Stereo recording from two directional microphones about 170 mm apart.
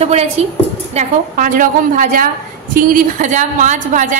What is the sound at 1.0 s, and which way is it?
A woman's voice, 50° right (ahead or behind).